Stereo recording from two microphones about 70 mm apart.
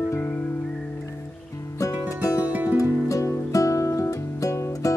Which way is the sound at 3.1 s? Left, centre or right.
Left.